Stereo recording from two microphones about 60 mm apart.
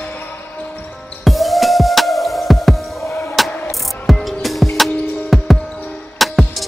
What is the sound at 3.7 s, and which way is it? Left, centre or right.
Music, centre.